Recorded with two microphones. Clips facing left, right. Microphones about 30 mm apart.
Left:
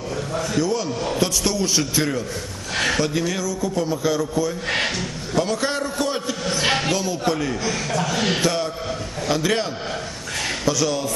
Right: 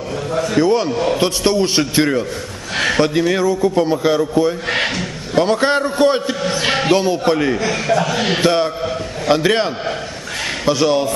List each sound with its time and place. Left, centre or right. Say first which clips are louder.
0.6 s a man's voice: right 8 dB; right
4.6 s speech: right 4 dB; centre
5.3 s a man's voice: right 8 dB; right
8.4 s a man's voice: right 7 dB; right